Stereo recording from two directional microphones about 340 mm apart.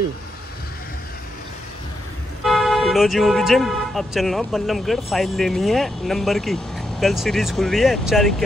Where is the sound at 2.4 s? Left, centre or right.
Centre.